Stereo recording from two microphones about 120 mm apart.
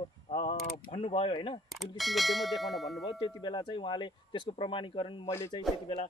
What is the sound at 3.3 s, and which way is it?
A man's voice, 40° left (ahead or behind).